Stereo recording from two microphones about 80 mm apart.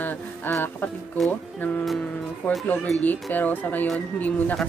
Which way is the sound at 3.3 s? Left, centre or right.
Left.